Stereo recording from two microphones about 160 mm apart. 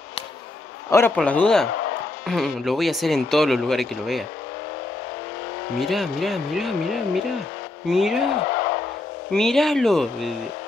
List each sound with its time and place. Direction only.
0.8 s a man's voice: 20° left (ahead or behind)
1.1 s speech: 5° left (ahead or behind)
5.8 s speech: centre (ahead or behind)
8.5 s a sound: 90° left
9.3 s speech: centre (ahead or behind)